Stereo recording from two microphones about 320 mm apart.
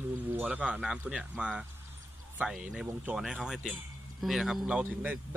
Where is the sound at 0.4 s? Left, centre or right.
Centre.